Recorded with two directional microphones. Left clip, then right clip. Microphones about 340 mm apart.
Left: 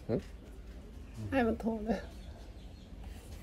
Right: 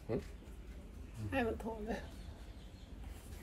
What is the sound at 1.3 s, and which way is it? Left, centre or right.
Speech, left.